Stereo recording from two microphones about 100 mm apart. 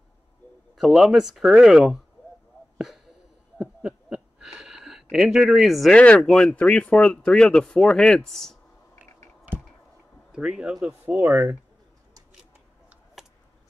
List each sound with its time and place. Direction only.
0.7 s speech: 5° right (ahead or behind)
2.8 s a sound: 5° right (ahead or behind)
5.9 s speech: 10° left (ahead or behind)
10.3 s speech: 5° right (ahead or behind)